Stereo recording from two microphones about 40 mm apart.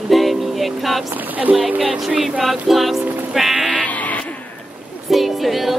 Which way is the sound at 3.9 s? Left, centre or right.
Left.